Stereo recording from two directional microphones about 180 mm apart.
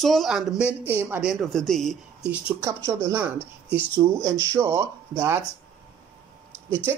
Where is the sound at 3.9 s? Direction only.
20° right (ahead or behind).